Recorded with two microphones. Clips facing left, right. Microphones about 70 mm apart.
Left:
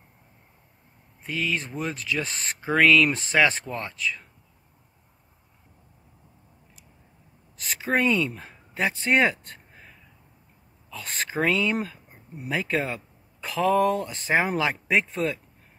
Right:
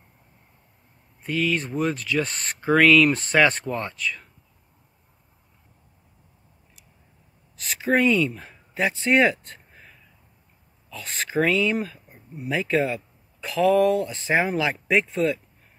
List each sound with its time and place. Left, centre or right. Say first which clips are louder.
1.2 s speech: right 4 dB; centre
7.9 s speech: right 3 dB; left
10.9 s speech: right 1 dB; left